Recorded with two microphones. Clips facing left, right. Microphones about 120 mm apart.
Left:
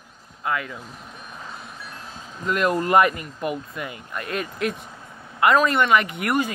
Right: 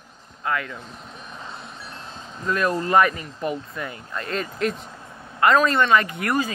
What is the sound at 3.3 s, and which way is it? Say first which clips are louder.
Speech: even; 10° left (ahead or behind).